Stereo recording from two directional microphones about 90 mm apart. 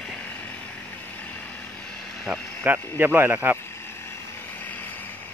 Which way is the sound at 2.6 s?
25° right (ahead or behind).